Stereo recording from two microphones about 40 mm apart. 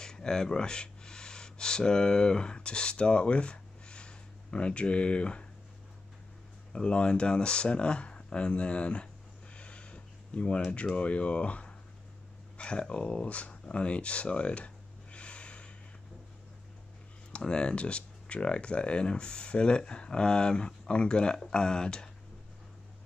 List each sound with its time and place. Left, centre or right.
0.0 s speech: centre
6.7 s speech: left
12.5 s a sound: left
12.8 s speech: left
13.1 s a sound: left
17.3 s speech: left